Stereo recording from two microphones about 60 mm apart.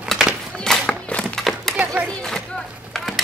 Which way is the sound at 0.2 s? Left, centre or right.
Centre.